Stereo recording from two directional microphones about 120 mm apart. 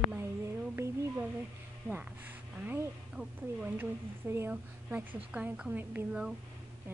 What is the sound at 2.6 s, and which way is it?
Speech, 10° right (ahead or behind).